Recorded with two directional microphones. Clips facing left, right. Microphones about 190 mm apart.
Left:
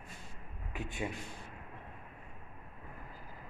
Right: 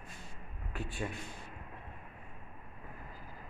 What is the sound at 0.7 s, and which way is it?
Speech, 15° left (ahead or behind).